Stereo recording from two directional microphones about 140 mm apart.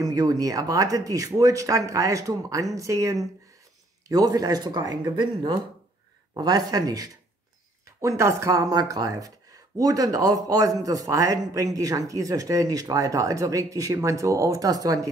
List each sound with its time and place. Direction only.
0.0 s speech: 25° right (ahead or behind)